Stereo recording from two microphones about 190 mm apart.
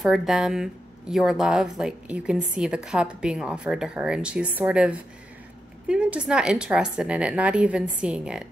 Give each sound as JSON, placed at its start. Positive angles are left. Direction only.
{"t": 0.0, "sound": "a woman's voice", "side_deg": 0}